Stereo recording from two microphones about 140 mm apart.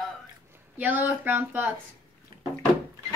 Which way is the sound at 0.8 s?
15° right (ahead or behind).